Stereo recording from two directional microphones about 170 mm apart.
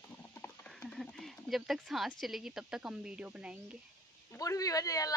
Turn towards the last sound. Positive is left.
turn(degrees=20)  # may be behind; listen again after turning